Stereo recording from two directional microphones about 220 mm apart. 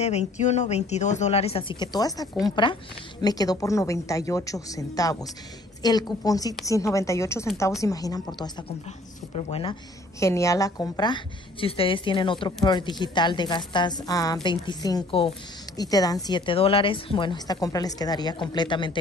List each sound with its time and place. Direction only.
0.0 s a woman's voice: 30° left (ahead or behind)
10.2 s a woman's voice: 15° left (ahead or behind)